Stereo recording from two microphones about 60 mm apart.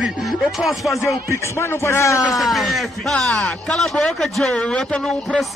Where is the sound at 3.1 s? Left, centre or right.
Centre.